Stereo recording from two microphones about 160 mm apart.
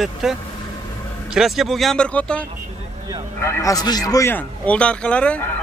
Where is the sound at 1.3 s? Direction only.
Centre (ahead or behind).